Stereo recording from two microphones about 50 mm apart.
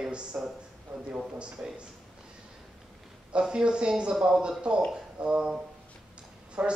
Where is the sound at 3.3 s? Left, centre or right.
Centre.